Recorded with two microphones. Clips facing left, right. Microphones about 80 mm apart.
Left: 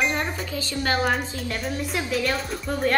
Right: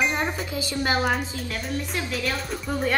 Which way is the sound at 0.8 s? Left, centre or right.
Centre.